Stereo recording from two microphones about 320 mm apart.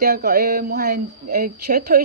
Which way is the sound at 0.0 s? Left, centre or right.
Right.